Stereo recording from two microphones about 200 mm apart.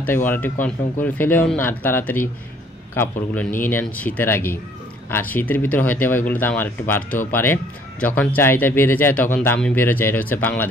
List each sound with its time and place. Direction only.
0.0 s speech: 10° left (ahead or behind)
7.1 s speech: 40° left (ahead or behind)
7.3 s speech: 10° left (ahead or behind)